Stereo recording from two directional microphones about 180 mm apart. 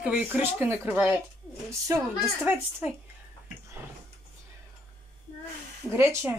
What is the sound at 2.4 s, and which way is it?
Speech, 10° right (ahead or behind).